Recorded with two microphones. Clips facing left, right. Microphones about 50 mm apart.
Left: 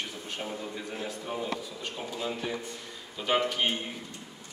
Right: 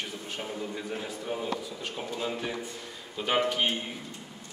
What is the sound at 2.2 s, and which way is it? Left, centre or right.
A man's voice, centre.